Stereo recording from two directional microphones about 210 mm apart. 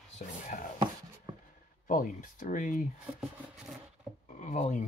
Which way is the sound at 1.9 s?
40° left (ahead or behind).